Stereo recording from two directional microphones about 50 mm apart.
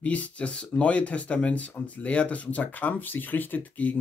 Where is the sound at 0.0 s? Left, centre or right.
Left.